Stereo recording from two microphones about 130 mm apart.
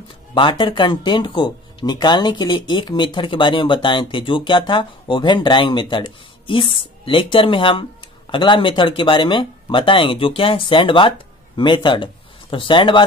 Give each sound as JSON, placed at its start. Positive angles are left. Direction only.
{"t": 0.3, "sound": "speech", "side_deg": 40}